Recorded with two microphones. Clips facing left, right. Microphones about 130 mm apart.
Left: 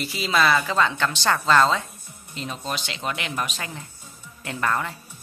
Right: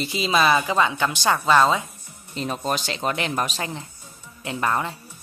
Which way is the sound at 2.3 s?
45° right (ahead or behind).